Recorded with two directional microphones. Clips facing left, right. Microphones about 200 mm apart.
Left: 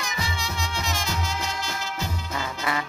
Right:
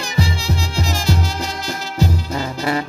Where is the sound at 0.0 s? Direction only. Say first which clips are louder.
Right 9 dB; 30° right (ahead or behind).